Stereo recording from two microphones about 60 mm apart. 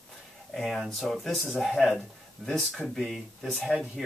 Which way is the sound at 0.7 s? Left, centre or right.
Centre.